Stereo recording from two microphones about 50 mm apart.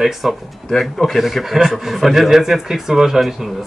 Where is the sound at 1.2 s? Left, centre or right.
Centre.